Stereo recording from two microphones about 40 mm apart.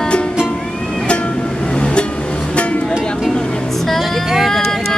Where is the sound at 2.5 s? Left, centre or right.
Left.